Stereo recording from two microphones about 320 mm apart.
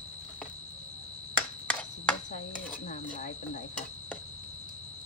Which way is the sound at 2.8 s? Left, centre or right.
Left.